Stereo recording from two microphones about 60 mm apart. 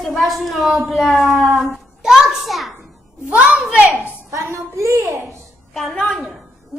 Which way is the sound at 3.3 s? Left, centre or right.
Centre.